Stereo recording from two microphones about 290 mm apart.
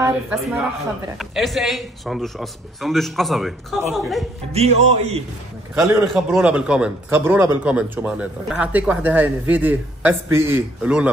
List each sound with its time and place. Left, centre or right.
0.0 s a man's voice: centre
4.5 s speech: right
5.8 s a man's voice: centre